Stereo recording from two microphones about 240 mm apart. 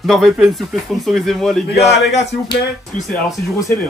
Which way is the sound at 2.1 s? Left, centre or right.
Left.